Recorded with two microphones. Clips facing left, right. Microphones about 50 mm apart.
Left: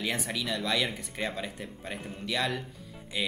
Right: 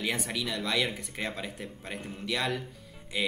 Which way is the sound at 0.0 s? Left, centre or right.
Centre.